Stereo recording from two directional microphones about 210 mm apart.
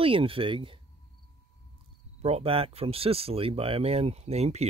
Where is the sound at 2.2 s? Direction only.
30° right (ahead or behind).